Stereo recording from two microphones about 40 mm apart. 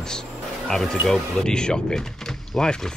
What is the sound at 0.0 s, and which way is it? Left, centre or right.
Speech, centre.